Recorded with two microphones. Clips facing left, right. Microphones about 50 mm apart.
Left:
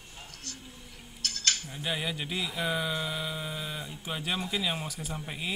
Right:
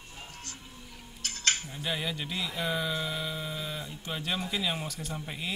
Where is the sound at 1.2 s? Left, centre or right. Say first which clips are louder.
Right 1 dB; right.